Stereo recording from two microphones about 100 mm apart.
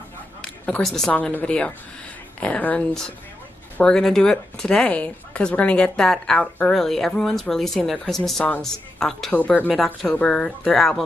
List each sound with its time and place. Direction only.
0.4 s a sound: 10° left (ahead or behind)
1.1 s a woman's voice: 15° left (ahead or behind)
9.3 s a woman's voice: 15° left (ahead or behind)